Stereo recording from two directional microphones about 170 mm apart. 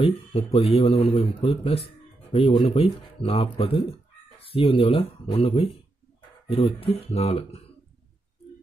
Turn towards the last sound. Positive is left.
turn(degrees=35)  # may be behind; listen again after turning